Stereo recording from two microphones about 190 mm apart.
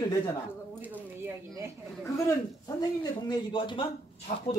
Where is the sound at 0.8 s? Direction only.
10° right (ahead or behind).